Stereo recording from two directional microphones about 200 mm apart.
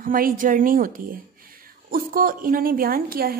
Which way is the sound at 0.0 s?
45° right (ahead or behind).